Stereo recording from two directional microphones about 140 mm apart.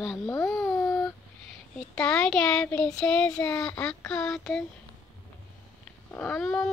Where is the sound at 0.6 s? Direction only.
20° left (ahead or behind).